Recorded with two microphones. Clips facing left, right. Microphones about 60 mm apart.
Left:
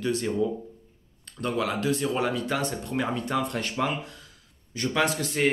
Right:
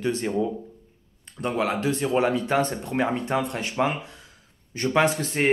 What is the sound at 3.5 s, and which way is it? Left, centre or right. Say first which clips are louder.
Speech: right 3 dB; centre.